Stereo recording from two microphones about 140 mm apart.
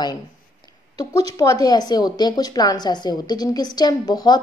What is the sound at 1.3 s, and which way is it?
A woman's voice, 25° left (ahead or behind).